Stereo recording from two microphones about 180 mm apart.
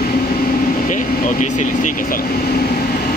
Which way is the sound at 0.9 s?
45° left (ahead or behind).